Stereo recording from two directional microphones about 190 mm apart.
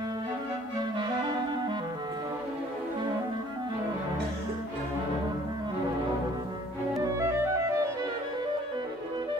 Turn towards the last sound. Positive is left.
turn(degrees=-15)  # may be behind; listen again after turning